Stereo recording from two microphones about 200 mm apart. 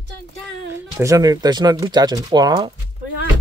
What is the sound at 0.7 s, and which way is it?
Speech, 15° right (ahead or behind).